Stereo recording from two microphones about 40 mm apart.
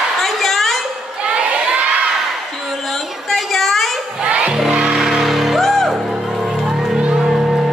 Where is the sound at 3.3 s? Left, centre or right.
Centre.